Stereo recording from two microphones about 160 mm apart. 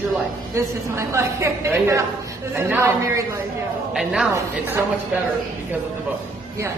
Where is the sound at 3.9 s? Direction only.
5° right (ahead or behind).